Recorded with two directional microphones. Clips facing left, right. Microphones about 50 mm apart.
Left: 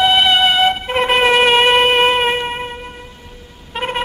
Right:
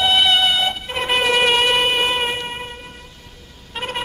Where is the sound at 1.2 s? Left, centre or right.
Left.